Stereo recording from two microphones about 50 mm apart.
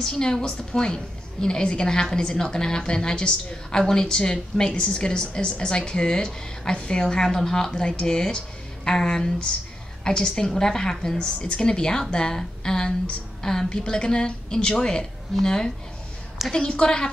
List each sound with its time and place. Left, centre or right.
0.0 s a woman's voice: centre
11.1 s a woman's voice: left